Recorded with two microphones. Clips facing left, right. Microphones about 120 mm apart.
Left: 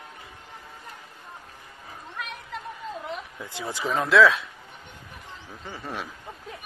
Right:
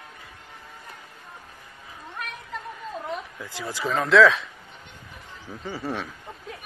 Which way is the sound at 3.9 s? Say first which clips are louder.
Right 2 dB; centre (ahead or behind).